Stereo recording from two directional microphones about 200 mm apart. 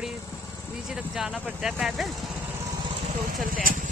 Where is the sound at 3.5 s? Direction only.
45° right (ahead or behind).